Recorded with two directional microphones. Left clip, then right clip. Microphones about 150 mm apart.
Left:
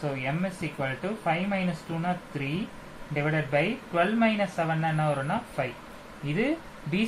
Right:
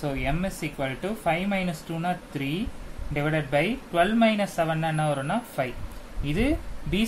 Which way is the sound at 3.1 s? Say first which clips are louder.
Right 2 dB; 30° right (ahead or behind).